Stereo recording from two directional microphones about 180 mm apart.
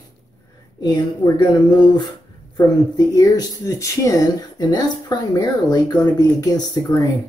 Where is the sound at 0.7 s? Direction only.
20° left (ahead or behind).